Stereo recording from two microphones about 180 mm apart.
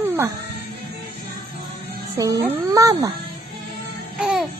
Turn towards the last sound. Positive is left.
turn(degrees=-5)  # may be behind; listen again after turning